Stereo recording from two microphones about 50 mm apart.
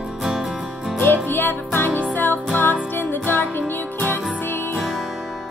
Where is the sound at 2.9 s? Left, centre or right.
Left.